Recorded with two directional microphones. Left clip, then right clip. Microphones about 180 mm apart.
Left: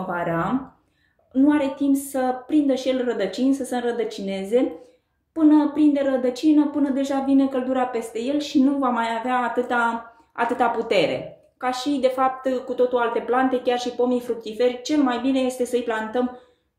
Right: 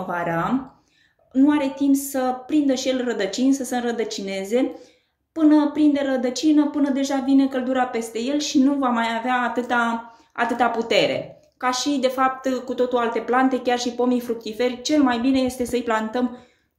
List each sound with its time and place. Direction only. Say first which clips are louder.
0.1 s a woman's voice: right 1 dB; centre (ahead or behind)